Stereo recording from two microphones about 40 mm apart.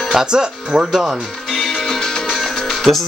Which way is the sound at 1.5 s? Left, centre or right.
Centre.